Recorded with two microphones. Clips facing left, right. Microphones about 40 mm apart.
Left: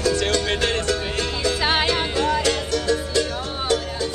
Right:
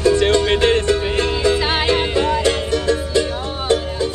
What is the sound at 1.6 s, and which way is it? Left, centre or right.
Music, centre.